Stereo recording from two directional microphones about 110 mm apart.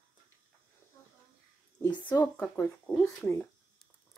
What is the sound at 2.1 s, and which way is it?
Speech, 15° left (ahead or behind).